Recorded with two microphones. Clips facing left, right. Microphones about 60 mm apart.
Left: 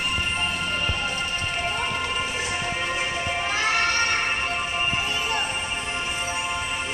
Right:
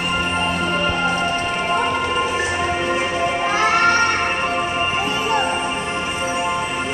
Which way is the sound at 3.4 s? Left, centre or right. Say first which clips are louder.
Right 6 dB; right.